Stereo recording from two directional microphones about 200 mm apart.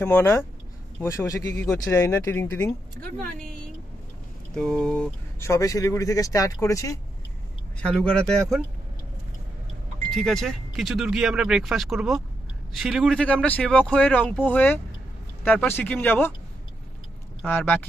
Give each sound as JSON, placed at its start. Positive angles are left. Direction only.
{"t": 0.0, "sound": "speech", "side_deg": 10}
{"t": 4.6, "sound": "speech", "side_deg": 5}
{"t": 5.4, "sound": "speech", "side_deg": 15}
{"t": 7.8, "sound": "speech", "side_deg": 5}
{"t": 10.1, "sound": "speech", "side_deg": 0}
{"t": 17.5, "sound": "speech", "side_deg": 10}